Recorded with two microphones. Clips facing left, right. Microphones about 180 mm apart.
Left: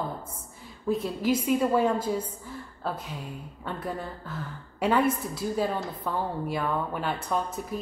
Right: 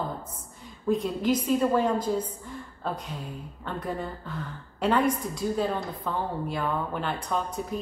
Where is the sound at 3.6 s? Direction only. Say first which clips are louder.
Right 1 dB; 5° left (ahead or behind).